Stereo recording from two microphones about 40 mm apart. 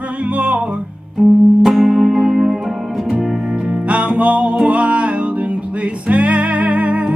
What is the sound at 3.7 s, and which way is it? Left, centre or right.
Music, right.